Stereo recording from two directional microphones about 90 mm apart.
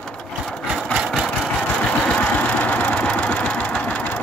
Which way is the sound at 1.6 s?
15° left (ahead or behind).